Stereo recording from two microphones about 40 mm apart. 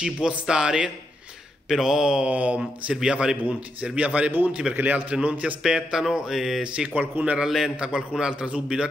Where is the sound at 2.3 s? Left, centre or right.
Right.